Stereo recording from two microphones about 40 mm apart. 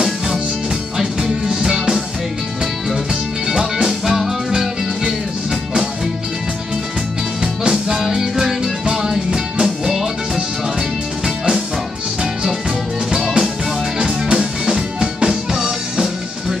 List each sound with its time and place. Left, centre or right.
0.9 s music: centre
3.4 s music: centre
7.6 s music: centre
13.9 s music: right